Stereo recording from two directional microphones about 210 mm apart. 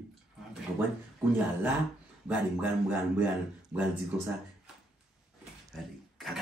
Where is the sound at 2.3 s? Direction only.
5° right (ahead or behind).